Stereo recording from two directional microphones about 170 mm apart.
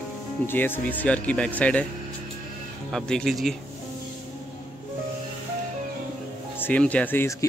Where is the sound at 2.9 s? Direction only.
5° left (ahead or behind).